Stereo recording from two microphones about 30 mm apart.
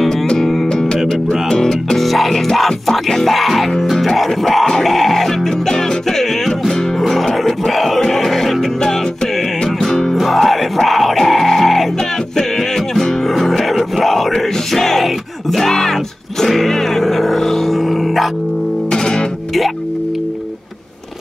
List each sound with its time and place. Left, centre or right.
0.7 s music: left
1.5 s music: centre
2.0 s music: centre
7.2 s a sound: centre
7.7 s crowd: centre
8.1 s music: centre
10.2 s music: centre
13.7 s a sound: centre
14.3 s a sound: centre
15.5 s music: centre
18.9 s music: left